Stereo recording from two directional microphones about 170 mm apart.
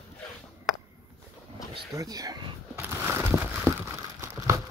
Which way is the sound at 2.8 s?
10° right (ahead or behind).